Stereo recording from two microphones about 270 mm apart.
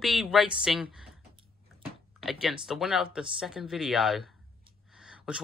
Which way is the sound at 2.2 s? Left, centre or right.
Centre.